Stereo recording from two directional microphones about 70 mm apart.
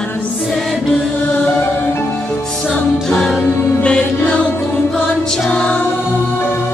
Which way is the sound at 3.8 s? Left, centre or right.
Centre.